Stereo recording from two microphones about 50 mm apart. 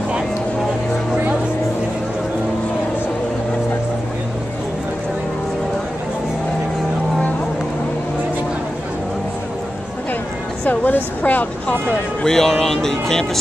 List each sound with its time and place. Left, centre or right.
10.6 s speech: left
12.2 s speech: centre